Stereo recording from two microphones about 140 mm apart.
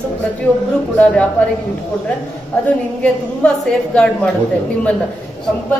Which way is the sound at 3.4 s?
5° left (ahead or behind).